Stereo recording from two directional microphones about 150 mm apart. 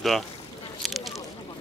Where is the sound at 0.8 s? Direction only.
Centre (ahead or behind).